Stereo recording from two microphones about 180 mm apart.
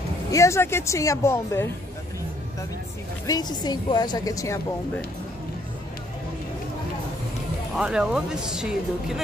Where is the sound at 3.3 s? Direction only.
20° left (ahead or behind).